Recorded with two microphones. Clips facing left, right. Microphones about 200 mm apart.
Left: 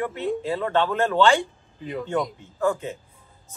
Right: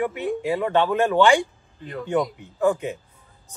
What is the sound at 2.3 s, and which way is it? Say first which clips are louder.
Speech: right 3 dB; 15° right (ahead or behind).